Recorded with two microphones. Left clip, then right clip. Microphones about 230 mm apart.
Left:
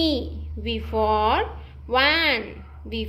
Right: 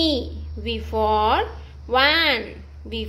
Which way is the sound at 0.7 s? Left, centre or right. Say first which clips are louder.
Right 1 dB; right.